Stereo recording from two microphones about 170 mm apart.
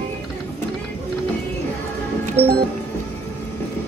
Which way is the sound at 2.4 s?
35° right (ahead or behind).